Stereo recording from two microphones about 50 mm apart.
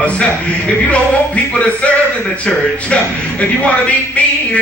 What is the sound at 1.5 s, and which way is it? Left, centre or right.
A man's voice, left.